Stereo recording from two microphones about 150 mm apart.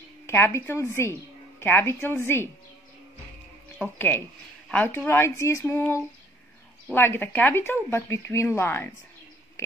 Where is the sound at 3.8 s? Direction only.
15° left (ahead or behind).